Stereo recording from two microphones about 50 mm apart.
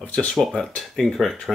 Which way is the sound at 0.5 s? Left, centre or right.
Centre.